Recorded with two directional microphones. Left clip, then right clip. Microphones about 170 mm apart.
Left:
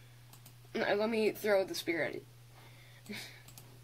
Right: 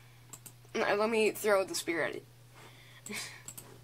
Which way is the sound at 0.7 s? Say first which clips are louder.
Right 3 dB; 25° left (ahead or behind).